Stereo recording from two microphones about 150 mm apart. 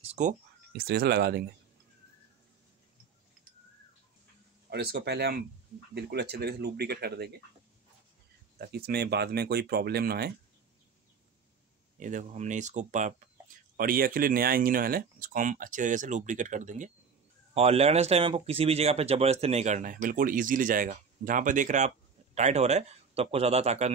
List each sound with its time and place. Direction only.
0.0 s a sound: 50° right (ahead or behind)
0.7 s speech: 90° right
4.6 s speech: 90° right
8.5 s speech: 90° right
12.0 s speech: 55° right (ahead or behind)
13.7 s speech: 70° right (ahead or behind); by 16.9 s 55° right (ahead or behind)
17.6 s speech: 40° right (ahead or behind)